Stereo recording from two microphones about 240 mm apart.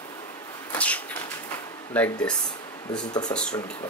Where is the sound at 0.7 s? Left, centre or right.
Centre.